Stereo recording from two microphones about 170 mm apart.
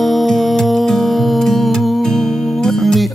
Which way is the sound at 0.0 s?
Centre (ahead or behind).